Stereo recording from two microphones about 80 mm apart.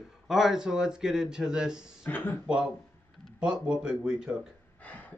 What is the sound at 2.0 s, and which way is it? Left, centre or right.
Speech, left.